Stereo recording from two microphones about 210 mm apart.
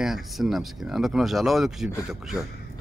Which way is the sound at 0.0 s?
Centre (ahead or behind).